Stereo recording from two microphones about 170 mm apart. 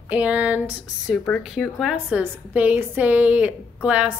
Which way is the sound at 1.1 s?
5° left (ahead or behind).